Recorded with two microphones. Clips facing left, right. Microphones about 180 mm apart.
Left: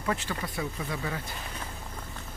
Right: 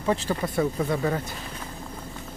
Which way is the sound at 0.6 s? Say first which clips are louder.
Right 12 dB; 45° right (ahead or behind).